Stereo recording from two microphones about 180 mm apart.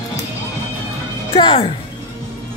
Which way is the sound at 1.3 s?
30° left (ahead or behind).